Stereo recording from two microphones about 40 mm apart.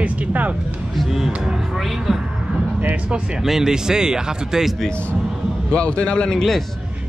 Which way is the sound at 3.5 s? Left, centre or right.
Centre.